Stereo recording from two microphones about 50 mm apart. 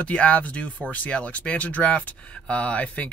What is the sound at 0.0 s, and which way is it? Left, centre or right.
Speech, left.